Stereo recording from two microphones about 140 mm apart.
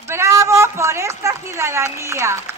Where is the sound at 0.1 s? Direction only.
20° right (ahead or behind).